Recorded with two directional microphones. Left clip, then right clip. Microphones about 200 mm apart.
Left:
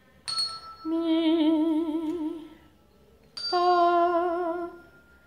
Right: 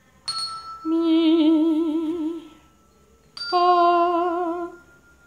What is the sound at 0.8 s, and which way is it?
Music, 20° right (ahead or behind).